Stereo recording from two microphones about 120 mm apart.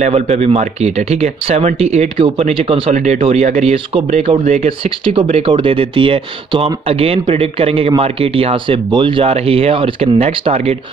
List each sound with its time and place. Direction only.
0.0 s speech: 60° right (ahead or behind)
2.9 s speech: 70° right (ahead or behind)
3.2 s speech: 60° right (ahead or behind)
3.7 s speech: 55° right (ahead or behind)